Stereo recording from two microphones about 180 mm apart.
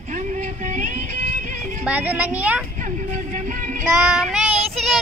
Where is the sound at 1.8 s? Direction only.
10° right (ahead or behind).